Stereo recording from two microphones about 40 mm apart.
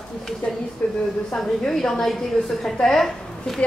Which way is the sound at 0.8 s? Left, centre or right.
Left.